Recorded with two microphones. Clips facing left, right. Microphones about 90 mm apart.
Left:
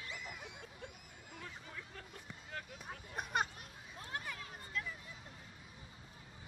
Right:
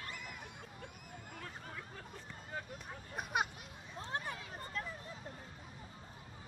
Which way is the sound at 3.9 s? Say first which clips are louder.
Right 4 dB; 30° right (ahead or behind).